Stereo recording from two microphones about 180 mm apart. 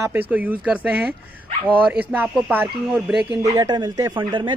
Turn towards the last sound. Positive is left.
turn(degrees=-25)  # may be behind; listen again after turning